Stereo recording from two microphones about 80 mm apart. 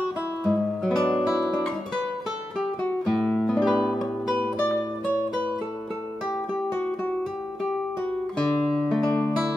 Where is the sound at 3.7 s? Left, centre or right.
Centre.